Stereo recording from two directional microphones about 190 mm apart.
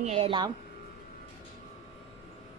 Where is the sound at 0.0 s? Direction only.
35° right (ahead or behind).